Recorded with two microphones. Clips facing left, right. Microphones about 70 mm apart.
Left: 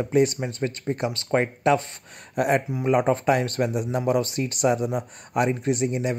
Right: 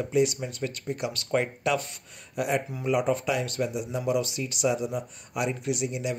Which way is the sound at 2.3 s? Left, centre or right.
Left.